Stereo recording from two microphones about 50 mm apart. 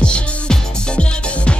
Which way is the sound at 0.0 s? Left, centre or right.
Left.